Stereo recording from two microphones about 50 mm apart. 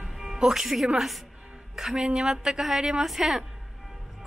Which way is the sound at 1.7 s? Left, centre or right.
Centre.